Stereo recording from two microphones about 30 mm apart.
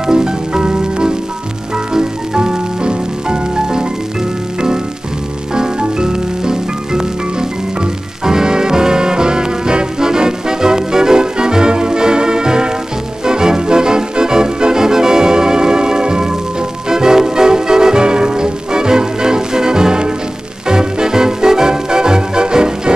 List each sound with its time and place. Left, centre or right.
0.0 s music: right
5.5 s music: right